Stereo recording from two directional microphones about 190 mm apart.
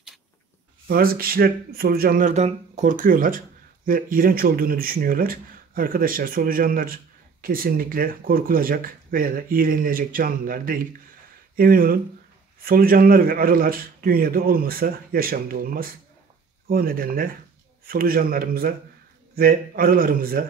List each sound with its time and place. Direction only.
0.8 s speech: 50° right (ahead or behind)